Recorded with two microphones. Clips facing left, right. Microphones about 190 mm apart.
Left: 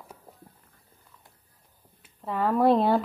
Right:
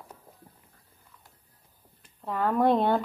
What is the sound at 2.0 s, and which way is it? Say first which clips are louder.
Speech: left 1 dB; centre (ahead or behind).